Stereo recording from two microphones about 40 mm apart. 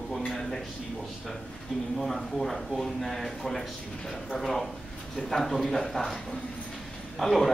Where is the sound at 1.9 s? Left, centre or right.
Centre.